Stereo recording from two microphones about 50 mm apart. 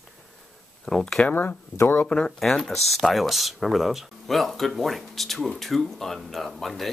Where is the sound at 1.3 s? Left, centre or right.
Left.